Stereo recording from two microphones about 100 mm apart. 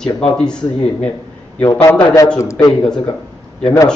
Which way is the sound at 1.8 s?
30° left (ahead or behind).